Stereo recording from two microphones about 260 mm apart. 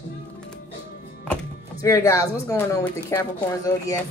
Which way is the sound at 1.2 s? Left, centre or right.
Centre.